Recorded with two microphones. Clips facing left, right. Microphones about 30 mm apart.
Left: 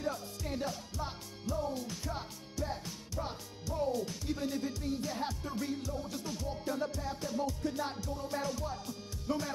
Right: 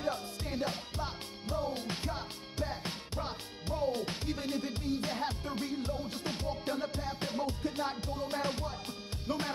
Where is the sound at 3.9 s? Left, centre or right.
Right.